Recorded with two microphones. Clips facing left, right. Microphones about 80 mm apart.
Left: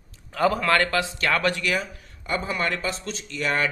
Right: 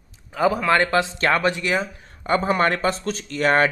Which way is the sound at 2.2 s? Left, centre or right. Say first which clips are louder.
Right 7 dB; right.